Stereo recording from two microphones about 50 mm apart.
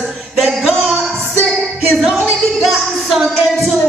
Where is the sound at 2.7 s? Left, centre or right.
Centre.